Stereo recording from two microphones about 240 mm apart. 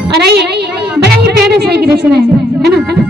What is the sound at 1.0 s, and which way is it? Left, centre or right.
Music, right.